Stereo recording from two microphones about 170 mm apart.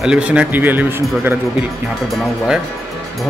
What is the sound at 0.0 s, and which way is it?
Speech, 5° right (ahead or behind).